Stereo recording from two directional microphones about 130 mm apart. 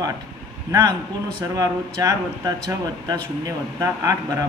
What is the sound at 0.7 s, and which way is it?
A man's voice, 25° right (ahead or behind).